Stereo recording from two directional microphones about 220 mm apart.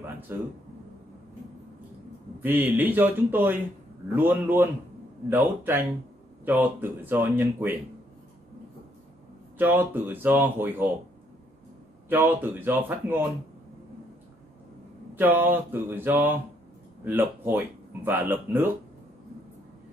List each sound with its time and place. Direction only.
0.3 s speech: 10° right (ahead or behind)
2.4 s speech: 10° right (ahead or behind)
9.6 s speech: 10° right (ahead or behind)
12.1 s speech: 10° right (ahead or behind)
15.1 s speech: 10° right (ahead or behind)